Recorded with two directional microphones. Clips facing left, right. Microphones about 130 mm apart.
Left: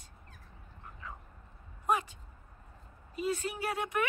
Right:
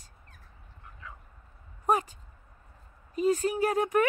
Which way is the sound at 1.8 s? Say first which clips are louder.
Right 4 dB; 40° right (ahead or behind).